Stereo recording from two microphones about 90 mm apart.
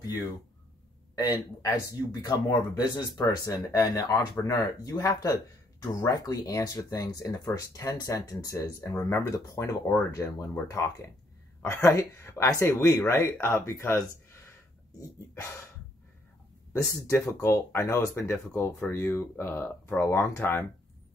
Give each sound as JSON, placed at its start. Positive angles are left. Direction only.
{"t": 1.1, "sound": "speech", "side_deg": 45}
{"t": 16.7, "sound": "speech", "side_deg": 30}